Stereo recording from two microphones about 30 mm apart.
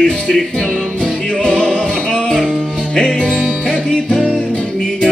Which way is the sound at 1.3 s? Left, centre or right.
Left.